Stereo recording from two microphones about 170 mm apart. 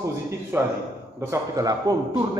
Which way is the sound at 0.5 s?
15° right (ahead or behind).